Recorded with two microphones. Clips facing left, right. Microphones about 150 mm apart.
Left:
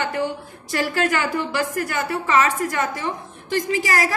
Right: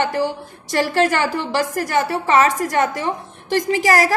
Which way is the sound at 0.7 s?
35° right (ahead or behind).